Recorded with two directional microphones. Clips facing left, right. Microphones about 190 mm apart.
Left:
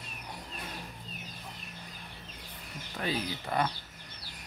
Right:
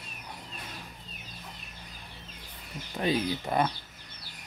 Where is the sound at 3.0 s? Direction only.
20° right (ahead or behind).